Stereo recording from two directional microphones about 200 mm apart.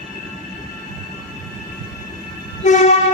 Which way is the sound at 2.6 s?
40° left (ahead or behind).